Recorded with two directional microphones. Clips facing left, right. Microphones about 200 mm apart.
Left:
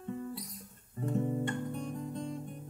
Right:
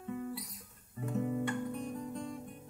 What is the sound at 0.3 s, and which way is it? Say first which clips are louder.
Music: even; centre (ahead or behind).